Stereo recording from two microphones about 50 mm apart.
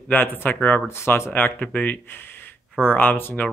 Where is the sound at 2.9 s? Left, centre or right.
Left.